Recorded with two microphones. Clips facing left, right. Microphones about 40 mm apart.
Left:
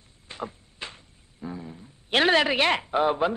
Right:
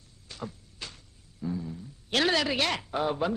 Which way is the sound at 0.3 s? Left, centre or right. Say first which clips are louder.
Left 4 dB; left.